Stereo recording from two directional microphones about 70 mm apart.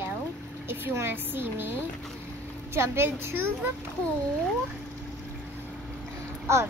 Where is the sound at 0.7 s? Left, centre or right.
Right.